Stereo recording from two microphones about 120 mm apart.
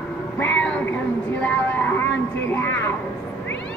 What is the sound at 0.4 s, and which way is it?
Cat, 10° left (ahead or behind).